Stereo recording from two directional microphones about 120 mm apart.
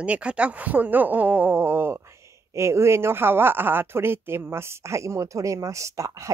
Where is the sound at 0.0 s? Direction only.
10° right (ahead or behind).